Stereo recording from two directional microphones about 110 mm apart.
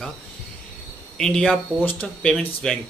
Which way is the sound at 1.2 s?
5° left (ahead or behind).